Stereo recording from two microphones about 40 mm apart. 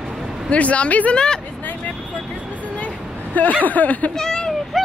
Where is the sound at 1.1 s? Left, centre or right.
Left.